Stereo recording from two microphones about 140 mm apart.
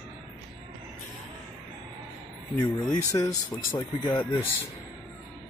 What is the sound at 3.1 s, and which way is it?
Speech, 25° left (ahead or behind).